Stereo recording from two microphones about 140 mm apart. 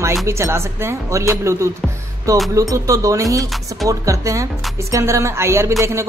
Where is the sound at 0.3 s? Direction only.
20° right (ahead or behind).